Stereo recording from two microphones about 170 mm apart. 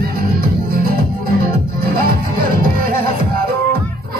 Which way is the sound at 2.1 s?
60° right (ahead or behind).